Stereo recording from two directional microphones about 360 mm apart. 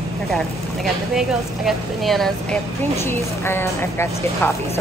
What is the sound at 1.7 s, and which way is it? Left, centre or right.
Speech, centre.